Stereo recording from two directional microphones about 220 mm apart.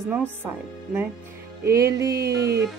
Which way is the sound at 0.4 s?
10° right (ahead or behind).